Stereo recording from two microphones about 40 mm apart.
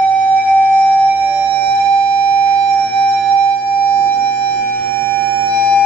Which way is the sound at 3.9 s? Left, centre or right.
Left.